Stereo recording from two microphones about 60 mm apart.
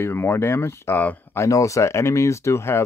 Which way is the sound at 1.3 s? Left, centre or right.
Left.